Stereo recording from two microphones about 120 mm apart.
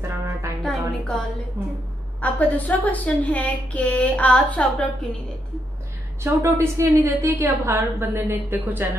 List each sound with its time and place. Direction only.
0.6 s music: 5° left (ahead or behind)
2.2 s a woman's voice: 15° left (ahead or behind)
6.2 s a woman's voice: 20° right (ahead or behind)